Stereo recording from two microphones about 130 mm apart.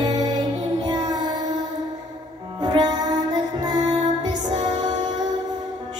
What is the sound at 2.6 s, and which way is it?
Music, 35° right (ahead or behind).